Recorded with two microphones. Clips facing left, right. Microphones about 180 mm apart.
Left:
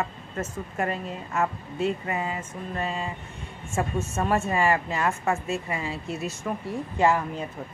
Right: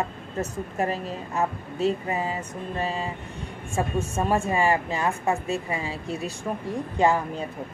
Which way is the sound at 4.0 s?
30° right (ahead or behind).